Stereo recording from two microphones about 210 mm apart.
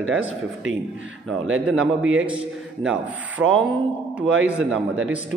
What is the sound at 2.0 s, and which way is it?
Speech, 70° right (ahead or behind).